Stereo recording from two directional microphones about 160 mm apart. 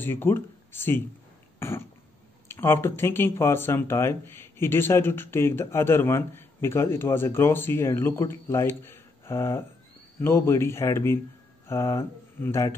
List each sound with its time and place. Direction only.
0.0 s speech: 15° left (ahead or behind)
1.6 s cough: 15° left (ahead or behind)
2.4 s speech: 15° left (ahead or behind)